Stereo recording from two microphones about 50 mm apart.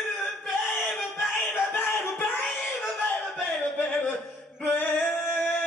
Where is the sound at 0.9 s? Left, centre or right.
Centre.